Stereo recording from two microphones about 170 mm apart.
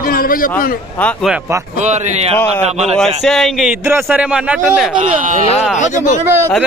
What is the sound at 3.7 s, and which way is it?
Speech, 15° right (ahead or behind).